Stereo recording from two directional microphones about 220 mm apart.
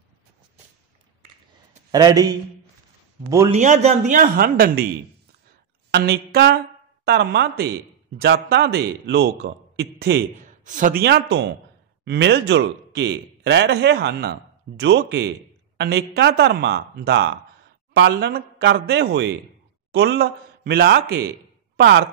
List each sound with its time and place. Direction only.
1.9 s a man's voice: 15° right (ahead or behind)
3.5 s speech: 35° right (ahead or behind)
5.9 s a woman's voice: 45° right (ahead or behind)